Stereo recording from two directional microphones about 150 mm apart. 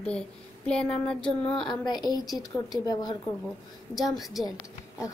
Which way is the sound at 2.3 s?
Centre (ahead or behind).